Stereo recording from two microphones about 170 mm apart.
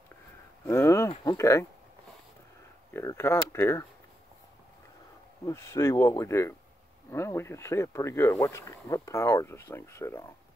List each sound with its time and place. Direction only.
0.7 s speech: 15° left (ahead or behind)
2.9 s speech: 15° left (ahead or behind)
5.4 s speech: 15° left (ahead or behind)